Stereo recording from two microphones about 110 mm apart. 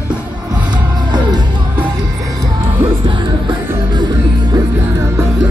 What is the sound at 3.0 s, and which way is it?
Music, 45° right (ahead or behind).